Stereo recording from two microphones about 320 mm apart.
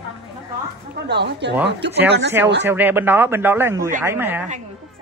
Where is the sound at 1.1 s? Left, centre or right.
Right.